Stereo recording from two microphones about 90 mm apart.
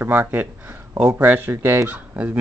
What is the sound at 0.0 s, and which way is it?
Speech, 20° right (ahead or behind).